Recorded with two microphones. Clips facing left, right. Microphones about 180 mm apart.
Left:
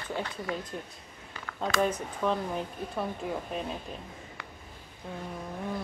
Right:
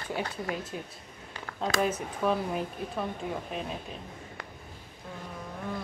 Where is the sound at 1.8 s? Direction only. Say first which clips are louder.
Left 1 dB; 5° right (ahead or behind).